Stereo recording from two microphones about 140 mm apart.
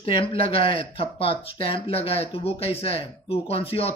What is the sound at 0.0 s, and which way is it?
Speech, 40° left (ahead or behind).